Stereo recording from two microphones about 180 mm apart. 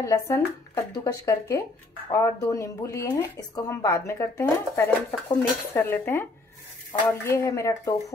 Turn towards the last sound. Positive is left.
turn(degrees=15)  # may be behind; listen again after turning